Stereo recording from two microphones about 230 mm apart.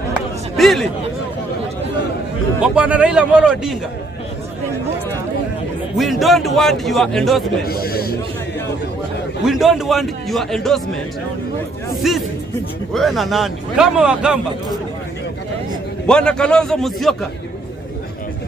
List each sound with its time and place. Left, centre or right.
0.1 s a sound: centre
2.6 s a man's voice: centre
5.9 s a man's voice: centre
7.6 s a sound: left
9.4 s a man's voice: centre
12.0 s a man's voice: centre
16.1 s a man's voice: centre